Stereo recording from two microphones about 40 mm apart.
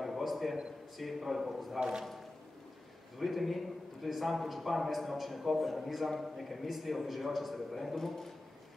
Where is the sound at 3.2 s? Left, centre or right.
Centre.